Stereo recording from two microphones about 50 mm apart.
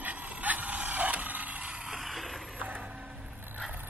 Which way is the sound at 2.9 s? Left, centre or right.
Right.